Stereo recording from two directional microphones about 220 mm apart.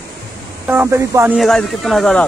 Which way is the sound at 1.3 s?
Centre (ahead or behind).